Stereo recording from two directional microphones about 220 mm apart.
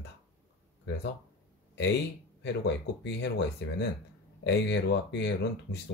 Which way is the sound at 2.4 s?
50° left (ahead or behind).